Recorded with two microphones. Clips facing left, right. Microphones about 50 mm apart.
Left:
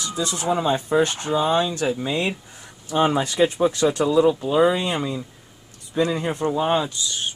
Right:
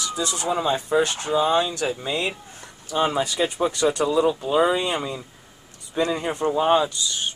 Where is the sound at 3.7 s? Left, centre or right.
Centre.